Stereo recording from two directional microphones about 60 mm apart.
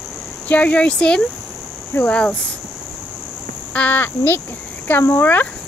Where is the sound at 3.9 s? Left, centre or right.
Left.